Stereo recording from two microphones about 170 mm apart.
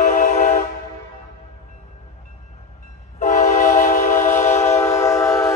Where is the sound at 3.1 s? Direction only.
50° left (ahead or behind).